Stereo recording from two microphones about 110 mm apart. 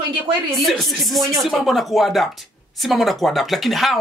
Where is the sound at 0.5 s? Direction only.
Centre (ahead or behind).